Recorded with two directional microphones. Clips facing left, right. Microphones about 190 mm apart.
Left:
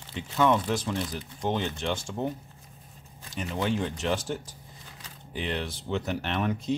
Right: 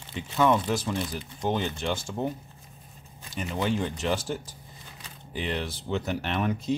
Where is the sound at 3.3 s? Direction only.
5° right (ahead or behind).